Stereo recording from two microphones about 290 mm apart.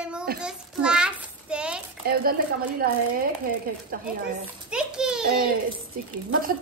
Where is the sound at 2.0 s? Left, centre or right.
Right.